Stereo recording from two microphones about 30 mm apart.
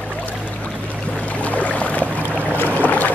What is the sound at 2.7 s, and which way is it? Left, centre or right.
Boat, left.